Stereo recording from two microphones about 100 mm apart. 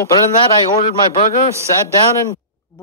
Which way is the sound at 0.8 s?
90° left.